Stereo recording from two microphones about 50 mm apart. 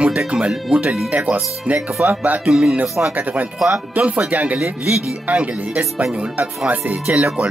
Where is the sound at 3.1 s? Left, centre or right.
Right.